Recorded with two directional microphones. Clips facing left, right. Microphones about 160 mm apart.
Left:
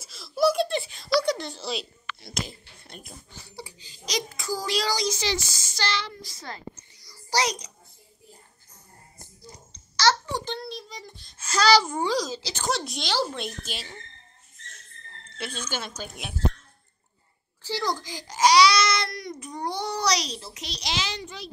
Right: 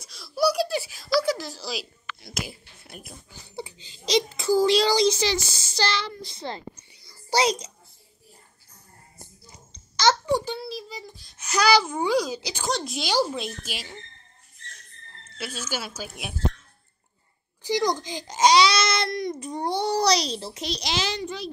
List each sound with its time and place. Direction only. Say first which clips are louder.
0.0 s a sound: left 1 dB; centre (ahead or behind)
3.5 s a sound: right 7 dB; 25° right (ahead or behind)
9.9 s babbling: right 3 dB; 15° right (ahead or behind)
11.3 s speech: even; 15° right (ahead or behind)
12.6 s speech: right 1 dB; centre (ahead or behind)
15.2 s speech: even; 5° right (ahead or behind)
17.6 s speech: right 5 dB; 20° right (ahead or behind); by 21.4 s 40° right (ahead or behind)